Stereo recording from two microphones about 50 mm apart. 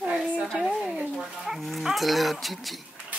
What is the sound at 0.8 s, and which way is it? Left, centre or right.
Speech, centre.